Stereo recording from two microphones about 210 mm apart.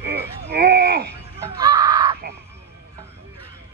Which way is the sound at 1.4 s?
20° right (ahead or behind).